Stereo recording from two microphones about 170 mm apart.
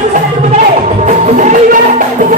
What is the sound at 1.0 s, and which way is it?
Music, 50° right (ahead or behind).